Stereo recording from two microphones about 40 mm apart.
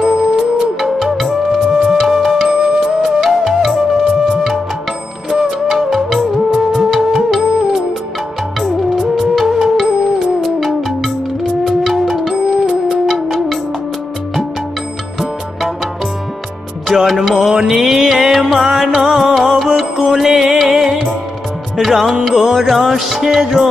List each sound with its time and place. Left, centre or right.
0.0 s music: centre
0.4 s music: centre
5.3 s music: centre
12.4 s music: centre
13.0 s music: centre
16.8 s music: centre